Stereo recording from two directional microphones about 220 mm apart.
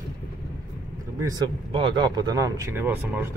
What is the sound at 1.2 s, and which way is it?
Speech, 20° right (ahead or behind).